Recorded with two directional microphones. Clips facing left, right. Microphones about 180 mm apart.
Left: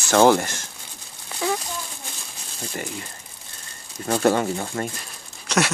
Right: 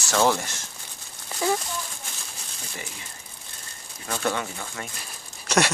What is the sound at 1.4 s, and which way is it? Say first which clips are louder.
Speech: even; centre (ahead or behind).